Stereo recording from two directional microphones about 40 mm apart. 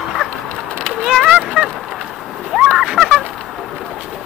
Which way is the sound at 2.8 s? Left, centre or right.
Centre.